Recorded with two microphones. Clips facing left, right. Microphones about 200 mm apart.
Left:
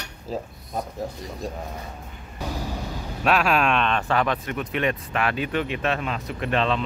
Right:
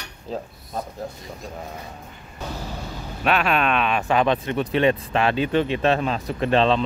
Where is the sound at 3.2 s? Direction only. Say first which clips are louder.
Even; centre (ahead or behind).